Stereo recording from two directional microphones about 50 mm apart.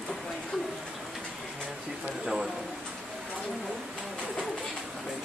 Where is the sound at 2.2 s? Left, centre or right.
Centre.